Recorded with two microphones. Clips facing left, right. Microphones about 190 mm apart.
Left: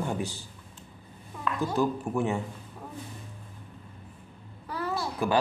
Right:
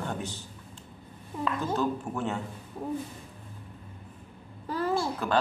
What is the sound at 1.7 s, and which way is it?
Speech, 15° left (ahead or behind).